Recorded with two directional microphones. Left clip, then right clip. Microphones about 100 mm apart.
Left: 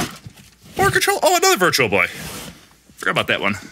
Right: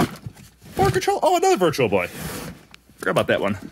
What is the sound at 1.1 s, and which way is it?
Speech, 5° right (ahead or behind).